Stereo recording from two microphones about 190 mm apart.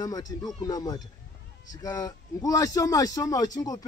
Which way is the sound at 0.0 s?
20° left (ahead or behind).